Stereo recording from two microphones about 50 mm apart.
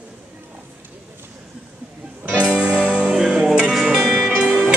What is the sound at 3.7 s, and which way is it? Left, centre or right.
Music, centre.